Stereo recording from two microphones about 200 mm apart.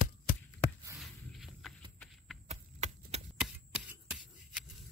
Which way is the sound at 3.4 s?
5° right (ahead or behind).